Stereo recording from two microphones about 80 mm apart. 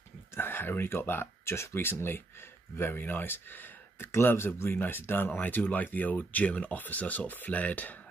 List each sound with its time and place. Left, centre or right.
0.3 s speech: left